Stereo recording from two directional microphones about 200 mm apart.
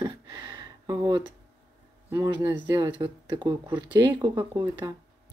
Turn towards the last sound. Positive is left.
turn(degrees=-20)  # may be behind; listen again after turning